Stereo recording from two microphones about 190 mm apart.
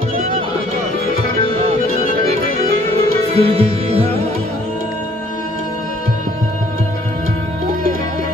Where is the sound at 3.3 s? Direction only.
30° right (ahead or behind).